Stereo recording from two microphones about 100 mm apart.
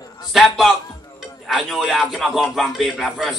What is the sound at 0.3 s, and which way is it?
Speech, centre (ahead or behind).